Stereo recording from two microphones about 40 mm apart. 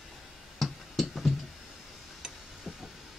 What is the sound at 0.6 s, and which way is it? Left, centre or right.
Music, centre.